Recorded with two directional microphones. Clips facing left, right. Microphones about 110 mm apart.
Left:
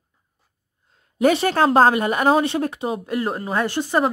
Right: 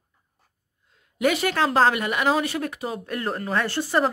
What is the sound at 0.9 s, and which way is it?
A woman's voice, 35° left (ahead or behind).